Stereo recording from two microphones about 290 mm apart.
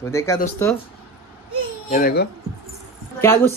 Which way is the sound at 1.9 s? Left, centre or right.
Left.